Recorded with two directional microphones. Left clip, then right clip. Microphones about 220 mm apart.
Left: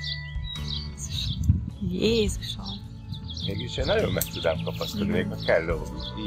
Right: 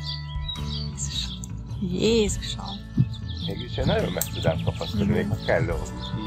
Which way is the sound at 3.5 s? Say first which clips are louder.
Left 1 dB; 60° left (ahead or behind).